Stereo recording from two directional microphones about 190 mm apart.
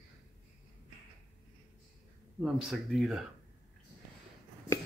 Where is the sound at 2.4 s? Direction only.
Centre (ahead or behind).